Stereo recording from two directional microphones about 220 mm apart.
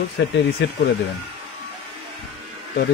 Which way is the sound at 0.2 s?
55° left (ahead or behind).